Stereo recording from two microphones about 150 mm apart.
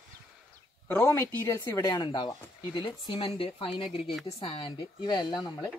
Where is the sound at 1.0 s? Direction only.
15° left (ahead or behind).